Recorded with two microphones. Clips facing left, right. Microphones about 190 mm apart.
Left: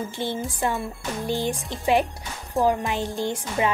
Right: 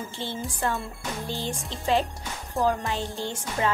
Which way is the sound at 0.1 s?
15° left (ahead or behind).